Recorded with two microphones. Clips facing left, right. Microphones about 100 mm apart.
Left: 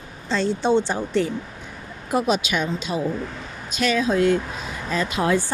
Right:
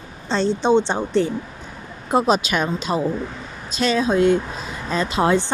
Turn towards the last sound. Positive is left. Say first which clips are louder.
# right 3 dB
turn(degrees=-25)  # may be behind; listen again after turning